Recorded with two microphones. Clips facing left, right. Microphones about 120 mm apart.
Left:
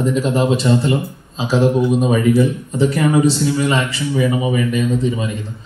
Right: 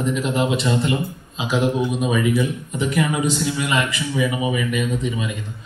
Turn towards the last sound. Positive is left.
turn(degrees=35)  # may be behind; listen again after turning